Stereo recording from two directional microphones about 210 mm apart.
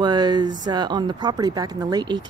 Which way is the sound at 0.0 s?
20° right (ahead or behind).